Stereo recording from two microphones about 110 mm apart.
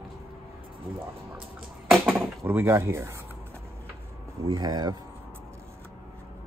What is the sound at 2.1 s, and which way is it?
Speech, 20° right (ahead or behind).